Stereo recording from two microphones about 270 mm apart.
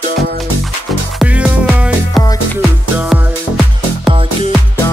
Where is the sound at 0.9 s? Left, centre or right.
Centre.